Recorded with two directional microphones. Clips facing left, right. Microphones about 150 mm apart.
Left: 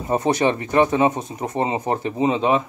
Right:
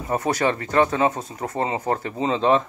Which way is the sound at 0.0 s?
20° left (ahead or behind).